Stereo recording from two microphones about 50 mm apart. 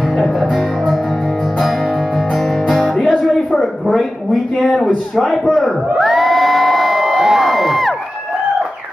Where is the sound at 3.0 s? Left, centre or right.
Centre.